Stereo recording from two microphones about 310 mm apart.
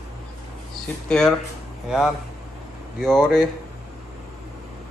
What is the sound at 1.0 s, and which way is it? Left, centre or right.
Speech, centre.